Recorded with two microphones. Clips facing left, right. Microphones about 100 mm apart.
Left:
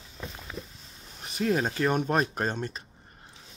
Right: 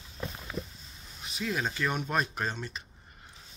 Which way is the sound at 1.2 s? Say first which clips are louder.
Left 6 dB; 50° left (ahead or behind).